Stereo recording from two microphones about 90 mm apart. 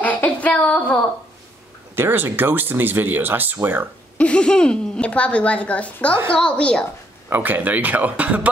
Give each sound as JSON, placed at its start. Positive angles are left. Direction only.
{"t": 0.0, "sound": "female singing", "side_deg": 15}
{"t": 2.0, "sound": "speech", "side_deg": -25}
{"t": 4.2, "sound": "speech", "side_deg": 10}
{"t": 7.2, "sound": "speech", "side_deg": -20}